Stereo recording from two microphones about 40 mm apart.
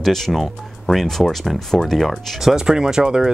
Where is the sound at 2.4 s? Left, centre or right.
Centre.